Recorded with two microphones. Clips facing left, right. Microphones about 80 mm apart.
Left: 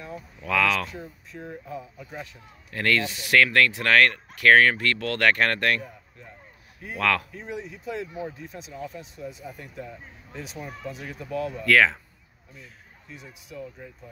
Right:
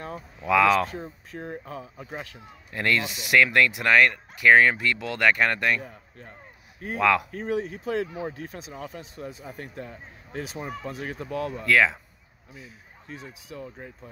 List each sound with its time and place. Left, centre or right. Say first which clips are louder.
0.7 s speech: right 5 dB; right
2.7 s speech: left 1 dB; centre
7.0 s speech: right 3 dB; centre
7.2 s speech: right 7 dB; right
11.6 s speech: left 1 dB; centre
13.2 s speech: left 2 dB; right